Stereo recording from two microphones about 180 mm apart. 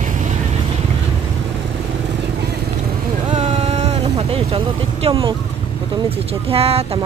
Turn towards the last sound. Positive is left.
turn(degrees=-35)  # may be behind; listen again after turning